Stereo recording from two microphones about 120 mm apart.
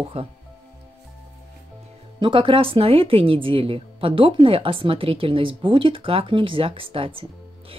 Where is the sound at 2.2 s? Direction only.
45° right (ahead or behind).